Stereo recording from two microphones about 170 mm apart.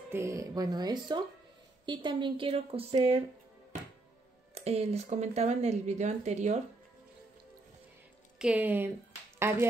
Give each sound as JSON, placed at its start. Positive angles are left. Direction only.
{"t": 0.1, "sound": "speech", "side_deg": -15}
{"t": 4.6, "sound": "speech", "side_deg": -40}
{"t": 8.4, "sound": "speech", "side_deg": -5}